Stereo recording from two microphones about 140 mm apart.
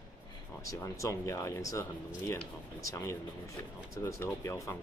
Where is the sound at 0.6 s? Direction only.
25° left (ahead or behind).